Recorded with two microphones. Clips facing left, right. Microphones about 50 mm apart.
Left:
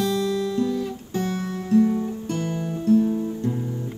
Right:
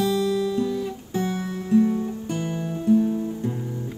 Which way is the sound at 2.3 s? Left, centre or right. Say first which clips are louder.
Left 1 dB; centre.